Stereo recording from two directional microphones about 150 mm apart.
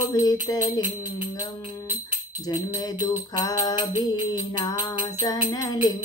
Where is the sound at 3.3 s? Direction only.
25° left (ahead or behind).